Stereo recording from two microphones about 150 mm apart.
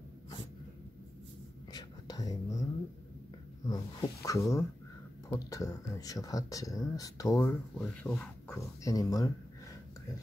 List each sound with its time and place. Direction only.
1.7 s whispering: 30° left (ahead or behind)
3.6 s snake: 25° left (ahead or behind)
5.3 s speech: 25° left (ahead or behind)